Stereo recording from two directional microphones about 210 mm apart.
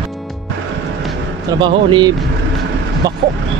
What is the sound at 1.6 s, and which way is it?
Speech, 20° right (ahead or behind).